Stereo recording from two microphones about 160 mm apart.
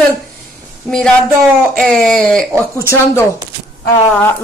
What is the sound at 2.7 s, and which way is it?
Speech, 20° left (ahead or behind).